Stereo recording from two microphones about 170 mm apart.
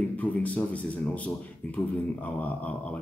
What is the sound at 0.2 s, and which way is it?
A man's voice, 10° left (ahead or behind).